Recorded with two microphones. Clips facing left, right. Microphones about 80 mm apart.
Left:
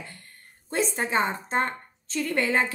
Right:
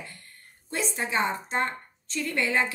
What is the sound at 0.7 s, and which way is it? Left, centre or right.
A woman's voice, left.